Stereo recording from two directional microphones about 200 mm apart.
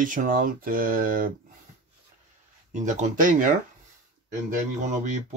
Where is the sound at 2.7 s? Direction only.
35° right (ahead or behind).